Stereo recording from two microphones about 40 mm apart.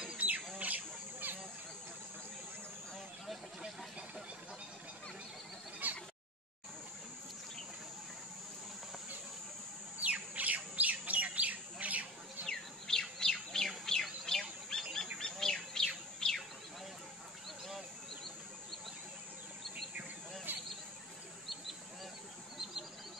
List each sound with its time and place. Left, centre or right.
0.2 s bird: right
5.8 s a sound: right
10.0 s bird: right
12.4 s bird: centre
14.7 s goose: centre
15.1 s bird: centre
20.5 s a sound: right